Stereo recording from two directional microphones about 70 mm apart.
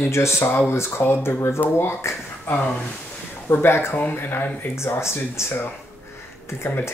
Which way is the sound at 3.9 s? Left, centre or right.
Left.